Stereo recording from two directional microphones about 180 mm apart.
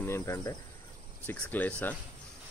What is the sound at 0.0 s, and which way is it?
Cricket, 15° left (ahead or behind).